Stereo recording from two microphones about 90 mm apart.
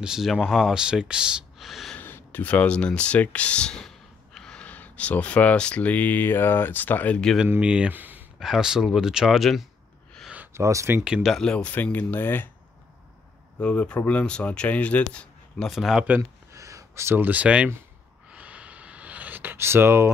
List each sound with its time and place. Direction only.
0.0 s speech: 5° right (ahead or behind)
2.0 s speech: 25° left (ahead or behind)
7.6 s speech: 10° right (ahead or behind)
8.4 s speech: 5° right (ahead or behind)
10.5 s speech: 35° right (ahead or behind)
11.2 s speech: 5° left (ahead or behind); by 12.4 s 25° left (ahead or behind)
13.6 s speech: 10° left (ahead or behind)
15.7 s speech: 5° right (ahead or behind)
16.2 s a sound: 35° right (ahead or behind)